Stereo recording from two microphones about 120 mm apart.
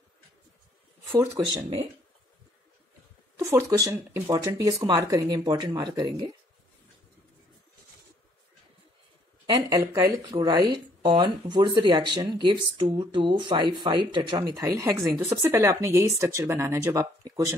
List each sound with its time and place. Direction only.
3.3 s speech: 25° right (ahead or behind)
9.5 s speech: 30° right (ahead or behind)
14.6 s speech: 25° right (ahead or behind)